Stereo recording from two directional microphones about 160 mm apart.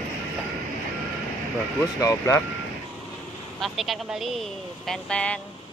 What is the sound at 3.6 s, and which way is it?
Speech, centre (ahead or behind).